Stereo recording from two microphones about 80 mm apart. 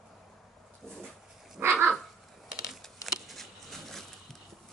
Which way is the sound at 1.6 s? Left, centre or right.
Right.